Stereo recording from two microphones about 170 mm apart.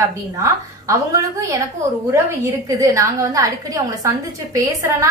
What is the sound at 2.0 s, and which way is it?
A woman's voice, 20° right (ahead or behind).